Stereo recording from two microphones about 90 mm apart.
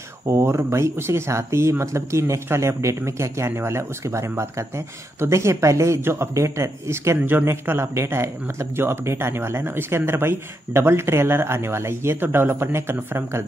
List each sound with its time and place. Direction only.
0.3 s speech: 30° right (ahead or behind)